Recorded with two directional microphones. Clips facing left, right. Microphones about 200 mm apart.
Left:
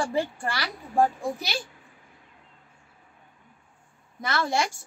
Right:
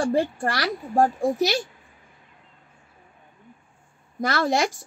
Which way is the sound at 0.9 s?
45° right (ahead or behind).